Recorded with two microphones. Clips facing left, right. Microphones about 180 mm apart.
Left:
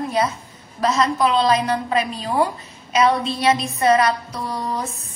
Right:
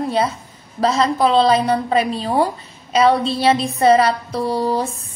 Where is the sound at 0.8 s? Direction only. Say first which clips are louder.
Right 2 dB; 30° right (ahead or behind).